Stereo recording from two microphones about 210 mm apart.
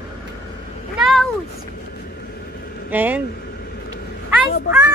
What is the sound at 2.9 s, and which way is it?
Speech, 10° right (ahead or behind).